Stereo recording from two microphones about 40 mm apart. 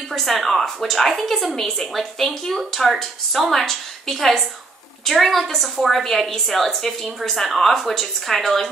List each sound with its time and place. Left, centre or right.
0.1 s a woman's voice: centre